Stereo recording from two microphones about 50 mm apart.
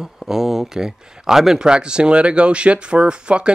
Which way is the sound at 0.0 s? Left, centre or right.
Centre.